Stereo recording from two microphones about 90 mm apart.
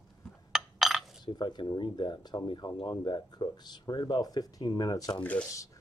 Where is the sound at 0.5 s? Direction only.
Centre (ahead or behind).